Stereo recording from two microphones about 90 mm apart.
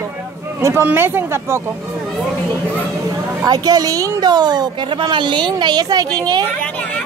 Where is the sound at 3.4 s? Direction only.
45° right (ahead or behind).